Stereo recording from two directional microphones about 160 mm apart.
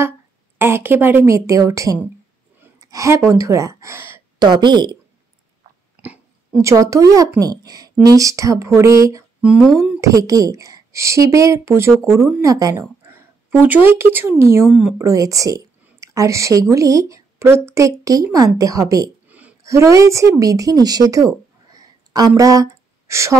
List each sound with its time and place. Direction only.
0.6 s speech: 15° right (ahead or behind)
2.6 s a sound: 20° right (ahead or behind)
3.3 s speech: 20° right (ahead or behind)
4.4 s a woman's voice: 25° right (ahead or behind)
6.6 s a woman's voice: 20° right (ahead or behind)
9.4 s speech: 5° right (ahead or behind)
9.9 s a woman's voice: 20° right (ahead or behind)
14.7 s speech: 5° right (ahead or behind)
15.0 s a woman's voice: 20° right (ahead or behind)
19.2 s a woman's voice: 10° right (ahead or behind)
21.6 s a sound: 25° right (ahead or behind)
22.4 s speech: 20° right (ahead or behind)